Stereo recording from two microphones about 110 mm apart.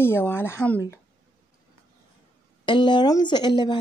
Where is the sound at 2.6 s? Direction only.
45° left (ahead or behind).